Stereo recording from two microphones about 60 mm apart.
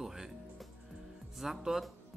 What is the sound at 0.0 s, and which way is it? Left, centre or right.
Music, centre.